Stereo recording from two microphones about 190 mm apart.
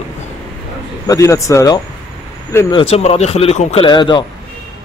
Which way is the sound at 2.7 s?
30° left (ahead or behind).